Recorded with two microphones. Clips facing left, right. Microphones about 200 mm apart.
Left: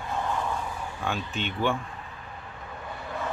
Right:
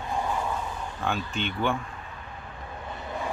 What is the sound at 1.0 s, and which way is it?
Speech, centre (ahead or behind).